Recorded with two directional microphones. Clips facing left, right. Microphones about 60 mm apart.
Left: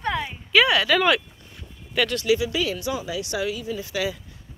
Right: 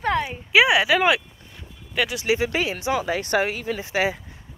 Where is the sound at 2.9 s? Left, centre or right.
Right.